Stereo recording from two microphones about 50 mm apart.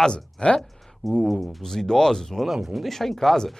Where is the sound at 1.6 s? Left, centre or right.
Centre.